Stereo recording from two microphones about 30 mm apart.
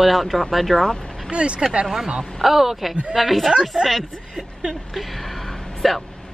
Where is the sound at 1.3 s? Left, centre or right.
Right.